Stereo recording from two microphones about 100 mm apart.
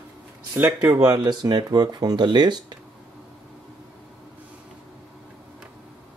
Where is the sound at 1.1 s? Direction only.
45° right (ahead or behind).